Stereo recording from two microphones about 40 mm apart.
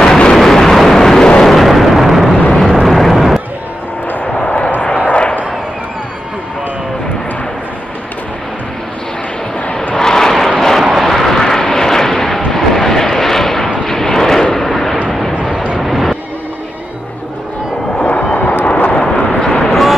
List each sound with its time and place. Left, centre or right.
0.0 s vehicle: centre
1.4 s artillery fire: centre
2.5 s explosion: centre
9.9 s vehicle: centre
10.8 s vehicle: centre
18.0 s a sound: left
18.7 s vehicle: left
18.9 s vehicle: left
19.7 s a sound: centre